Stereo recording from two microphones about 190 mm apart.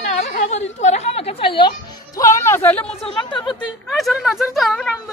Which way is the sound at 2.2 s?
15° left (ahead or behind).